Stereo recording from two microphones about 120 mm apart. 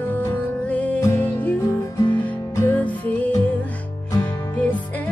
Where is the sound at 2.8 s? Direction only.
10° left (ahead or behind).